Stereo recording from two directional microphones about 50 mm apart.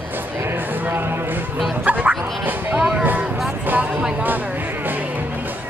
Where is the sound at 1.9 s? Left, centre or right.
Right.